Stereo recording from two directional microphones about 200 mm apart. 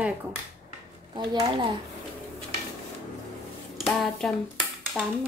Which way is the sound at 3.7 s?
Centre (ahead or behind).